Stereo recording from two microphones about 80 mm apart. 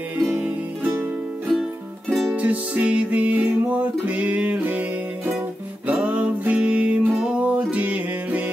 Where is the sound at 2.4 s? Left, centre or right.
Centre.